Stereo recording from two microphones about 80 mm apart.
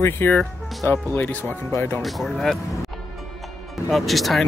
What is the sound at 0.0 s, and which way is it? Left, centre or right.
Speech, left.